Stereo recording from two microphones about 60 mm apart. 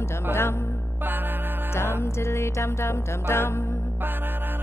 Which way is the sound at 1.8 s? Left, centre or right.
Left.